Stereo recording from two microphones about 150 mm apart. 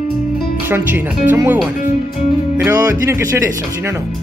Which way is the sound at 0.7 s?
15° right (ahead or behind).